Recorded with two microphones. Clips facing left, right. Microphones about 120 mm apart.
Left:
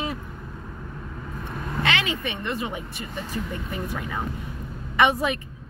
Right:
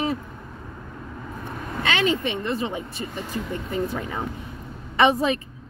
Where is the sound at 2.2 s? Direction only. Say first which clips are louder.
Right 3 dB; 30° right (ahead or behind).